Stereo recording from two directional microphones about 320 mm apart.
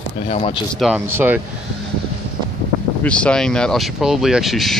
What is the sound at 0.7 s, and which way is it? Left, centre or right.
Speech, centre.